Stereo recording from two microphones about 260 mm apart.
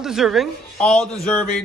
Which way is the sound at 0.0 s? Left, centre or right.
Centre.